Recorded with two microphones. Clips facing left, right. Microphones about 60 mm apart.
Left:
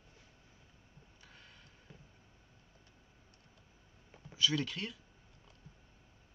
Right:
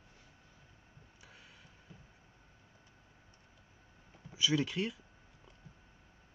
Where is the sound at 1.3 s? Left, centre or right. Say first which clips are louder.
Right 1 dB; centre.